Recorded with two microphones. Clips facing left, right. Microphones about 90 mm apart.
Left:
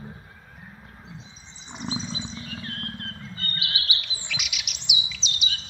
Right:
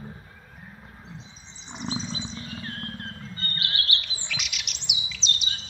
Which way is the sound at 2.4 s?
30° right (ahead or behind).